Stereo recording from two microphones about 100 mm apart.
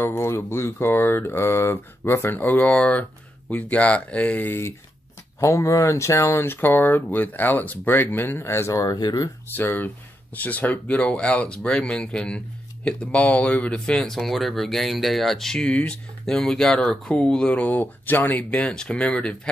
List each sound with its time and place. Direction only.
0.0 s speech: 25° left (ahead or behind)
8.9 s speech: 45° left (ahead or behind)
9.6 s speech: 20° left (ahead or behind)